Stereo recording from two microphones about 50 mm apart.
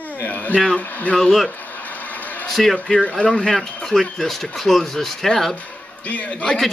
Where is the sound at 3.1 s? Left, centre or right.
Centre.